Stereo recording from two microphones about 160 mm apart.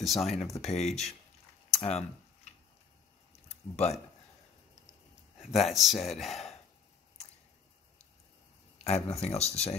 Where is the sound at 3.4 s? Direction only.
40° left (ahead or behind).